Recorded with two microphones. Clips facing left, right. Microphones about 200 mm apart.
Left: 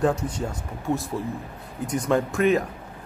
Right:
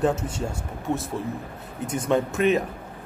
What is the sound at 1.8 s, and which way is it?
Speech, 25° right (ahead or behind).